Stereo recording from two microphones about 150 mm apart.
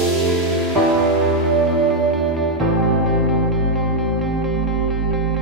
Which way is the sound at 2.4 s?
Centre (ahead or behind).